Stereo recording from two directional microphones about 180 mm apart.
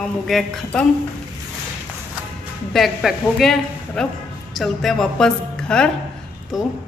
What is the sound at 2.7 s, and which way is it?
A woman's voice, centre (ahead or behind).